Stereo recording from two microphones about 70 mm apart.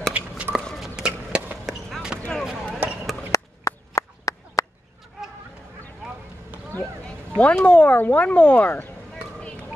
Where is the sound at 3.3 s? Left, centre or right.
Left.